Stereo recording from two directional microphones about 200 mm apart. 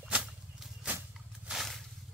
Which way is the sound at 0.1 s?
5° right (ahead or behind).